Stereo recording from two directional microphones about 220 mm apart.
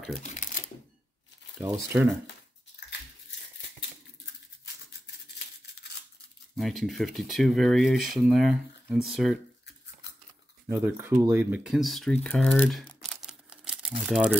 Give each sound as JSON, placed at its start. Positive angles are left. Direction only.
{"t": 0.2, "sound": "typewriter", "side_deg": 35}
{"t": 1.6, "sound": "speech", "side_deg": -10}
{"t": 6.5, "sound": "speech", "side_deg": 0}
{"t": 10.7, "sound": "speech", "side_deg": -10}